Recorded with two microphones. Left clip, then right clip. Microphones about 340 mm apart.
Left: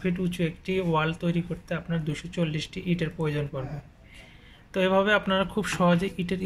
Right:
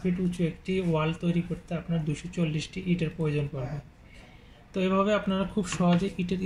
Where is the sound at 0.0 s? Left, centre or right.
Left.